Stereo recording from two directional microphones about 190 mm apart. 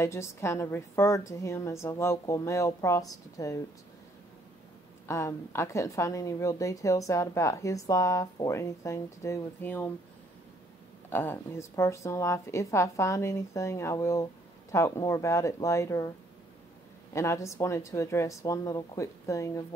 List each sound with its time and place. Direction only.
0.0 s speech: 15° left (ahead or behind)
5.0 s speech: 15° left (ahead or behind)
11.1 s speech: 10° left (ahead or behind)
17.1 s speech: 15° left (ahead or behind)